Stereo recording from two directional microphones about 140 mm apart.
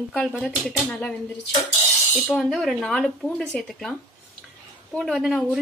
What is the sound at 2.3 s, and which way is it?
Speech, centre (ahead or behind).